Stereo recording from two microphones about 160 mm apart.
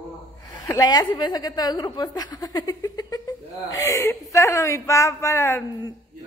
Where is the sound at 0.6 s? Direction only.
20° left (ahead or behind).